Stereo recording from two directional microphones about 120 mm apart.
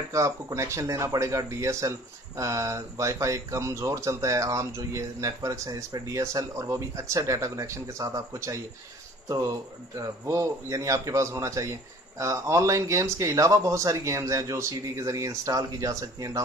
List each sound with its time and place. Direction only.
0.1 s speech: 25° right (ahead or behind)
9.9 s speech: 25° right (ahead or behind)